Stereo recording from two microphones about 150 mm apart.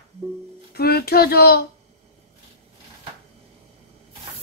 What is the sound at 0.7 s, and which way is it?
Speech, 90° left.